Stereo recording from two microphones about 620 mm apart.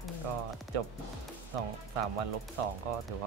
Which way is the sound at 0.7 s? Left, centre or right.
Right.